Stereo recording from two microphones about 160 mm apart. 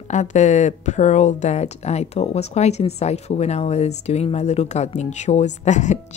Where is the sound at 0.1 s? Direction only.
50° left (ahead or behind).